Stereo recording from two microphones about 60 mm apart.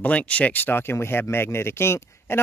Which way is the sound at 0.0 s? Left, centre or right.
Left.